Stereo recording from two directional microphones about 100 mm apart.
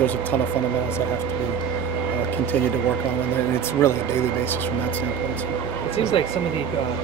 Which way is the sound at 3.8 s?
25° left (ahead or behind).